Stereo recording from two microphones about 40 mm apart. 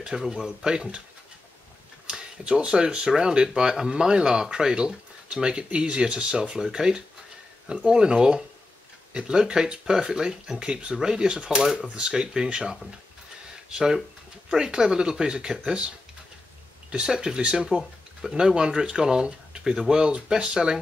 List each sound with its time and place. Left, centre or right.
0.0 s speech: centre
0.7 s speech: right
2.0 s speech: right
13.7 s speech: centre
17.1 s speech: centre